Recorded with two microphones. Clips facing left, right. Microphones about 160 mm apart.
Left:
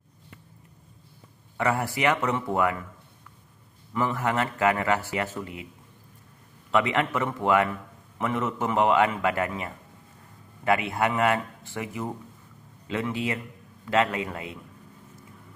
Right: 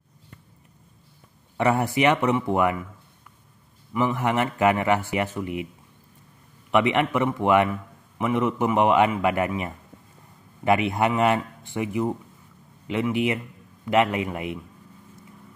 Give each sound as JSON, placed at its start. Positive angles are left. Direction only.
{"t": 1.6, "sound": "a man's voice", "side_deg": -20}
{"t": 3.9, "sound": "a man's voice", "side_deg": -15}
{"t": 6.7, "sound": "a man's voice", "side_deg": -20}